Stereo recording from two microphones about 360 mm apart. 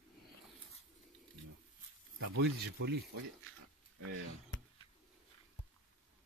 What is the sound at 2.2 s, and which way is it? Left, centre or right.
Speech, right.